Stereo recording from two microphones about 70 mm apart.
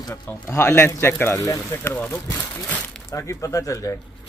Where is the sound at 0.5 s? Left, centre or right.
Left.